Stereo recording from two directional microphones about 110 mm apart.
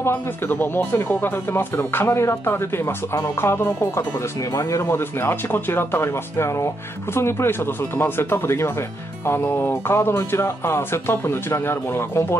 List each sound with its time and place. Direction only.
0.0 s speech: 20° left (ahead or behind)
4.5 s speech: 30° left (ahead or behind)